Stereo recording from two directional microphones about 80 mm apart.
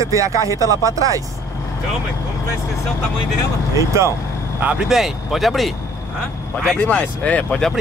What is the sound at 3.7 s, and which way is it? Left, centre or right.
Speech, right.